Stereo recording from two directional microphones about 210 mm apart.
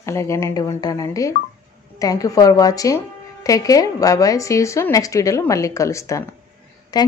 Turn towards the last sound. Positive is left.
turn(degrees=20)  # may be behind; listen again after turning